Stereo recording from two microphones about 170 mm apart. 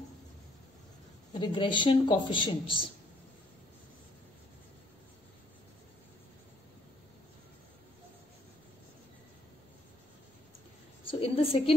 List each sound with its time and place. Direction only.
1.3 s speech: 30° left (ahead or behind)
11.1 s a woman's voice: 35° left (ahead or behind)